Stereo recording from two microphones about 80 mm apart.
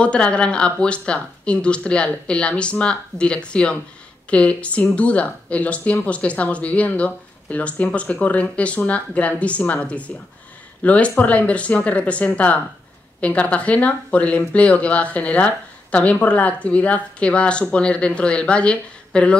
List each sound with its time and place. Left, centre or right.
0.0 s speech: centre